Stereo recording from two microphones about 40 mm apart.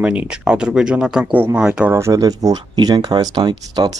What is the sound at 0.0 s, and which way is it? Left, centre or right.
Speech, right.